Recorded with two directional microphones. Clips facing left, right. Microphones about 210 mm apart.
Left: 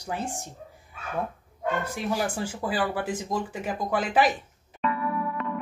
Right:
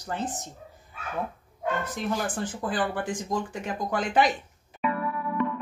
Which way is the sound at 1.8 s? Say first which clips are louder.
Left 1 dB; 10° left (ahead or behind).